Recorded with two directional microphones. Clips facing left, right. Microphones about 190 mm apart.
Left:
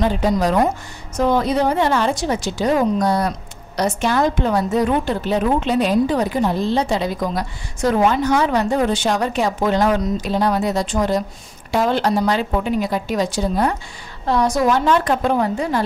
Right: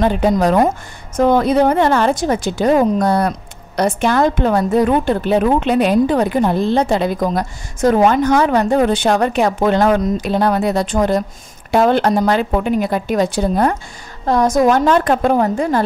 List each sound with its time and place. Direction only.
0.0 s a woman's voice: 55° right (ahead or behind)